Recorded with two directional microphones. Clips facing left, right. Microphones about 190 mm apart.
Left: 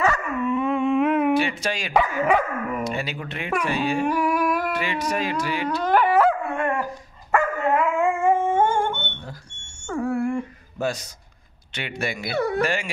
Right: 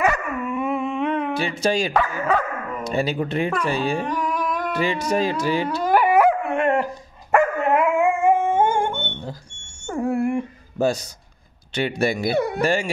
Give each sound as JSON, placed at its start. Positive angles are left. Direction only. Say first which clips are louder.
{"t": 0.0, "sound": "dog", "louder": "even", "side_deg": -15}
{"t": 1.4, "sound": "speech", "louder": "right 4 dB", "side_deg": -30}
{"t": 2.0, "sound": "speech", "louder": "left 1 dB", "side_deg": 10}
{"t": 2.8, "sound": "speech", "louder": "right 5 dB", "side_deg": -35}
{"t": 4.0, "sound": "humming", "louder": "left 3 dB", "side_deg": 10}
{"t": 4.7, "sound": "speech", "louder": "right 4 dB", "side_deg": -35}
{"t": 5.7, "sound": "dog", "louder": "even", "side_deg": -10}
{"t": 9.8, "sound": "a sound", "louder": "right 2 dB", "side_deg": -20}
{"t": 10.8, "sound": "a man's voice", "louder": "right 5 dB", "side_deg": -30}
{"t": 12.4, "sound": "speech", "louder": "right 1 dB", "side_deg": -15}
{"t": 12.6, "sound": "speech", "louder": "right 5 dB", "side_deg": -30}